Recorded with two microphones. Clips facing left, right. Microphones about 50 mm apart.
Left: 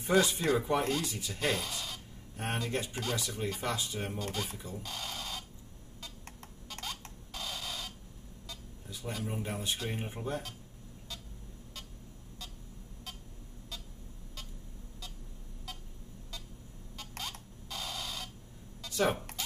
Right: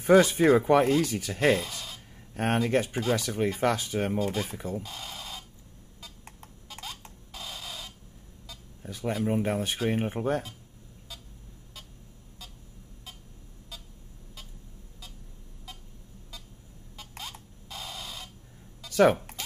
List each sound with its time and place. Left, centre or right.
0.0 s speech: right
1.7 s a sound: centre
2.3 s speech: right
4.2 s speech: centre
4.5 s speech: right
4.8 s a sound: centre
5.9 s cash register: centre
8.8 s speech: right
9.2 s speech: right
9.5 s speech: right
9.8 s speech: right
16.9 s a sound: centre
18.9 s a sound: right